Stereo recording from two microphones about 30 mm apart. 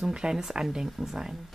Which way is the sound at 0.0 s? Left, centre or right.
Right.